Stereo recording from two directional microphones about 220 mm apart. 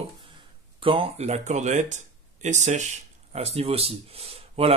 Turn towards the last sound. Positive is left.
turn(degrees=-25)  # may be behind; listen again after turning